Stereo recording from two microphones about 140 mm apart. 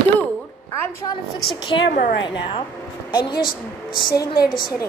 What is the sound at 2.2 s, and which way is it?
A woman's voice, 35° left (ahead or behind).